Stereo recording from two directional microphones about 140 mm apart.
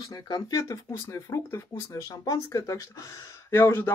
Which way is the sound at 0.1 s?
25° left (ahead or behind).